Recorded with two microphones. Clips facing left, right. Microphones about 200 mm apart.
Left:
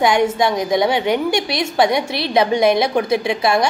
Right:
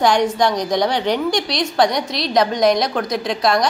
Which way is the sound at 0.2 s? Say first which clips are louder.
Left 1 dB; 25° left (ahead or behind).